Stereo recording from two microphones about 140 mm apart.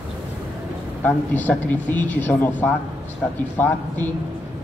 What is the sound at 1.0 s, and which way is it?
Speech, 10° left (ahead or behind).